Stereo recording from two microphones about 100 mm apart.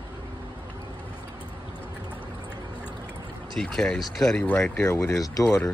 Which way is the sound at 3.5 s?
5° left (ahead or behind).